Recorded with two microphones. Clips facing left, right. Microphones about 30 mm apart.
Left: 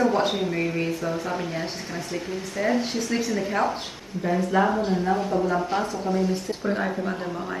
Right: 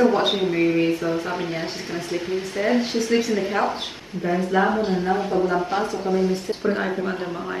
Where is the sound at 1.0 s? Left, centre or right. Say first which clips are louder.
Right 3 dB; right.